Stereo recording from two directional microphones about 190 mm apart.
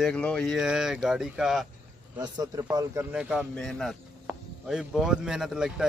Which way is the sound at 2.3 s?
20° right (ahead or behind).